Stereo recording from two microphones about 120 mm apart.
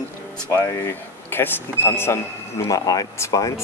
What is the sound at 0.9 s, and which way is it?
Speech, 20° left (ahead or behind).